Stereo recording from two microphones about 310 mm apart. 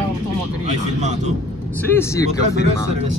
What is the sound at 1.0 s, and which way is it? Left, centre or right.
Speech, right.